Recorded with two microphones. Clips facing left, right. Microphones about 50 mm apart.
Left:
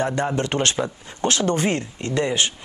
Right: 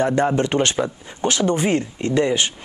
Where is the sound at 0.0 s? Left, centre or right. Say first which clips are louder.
Right 4 dB; right.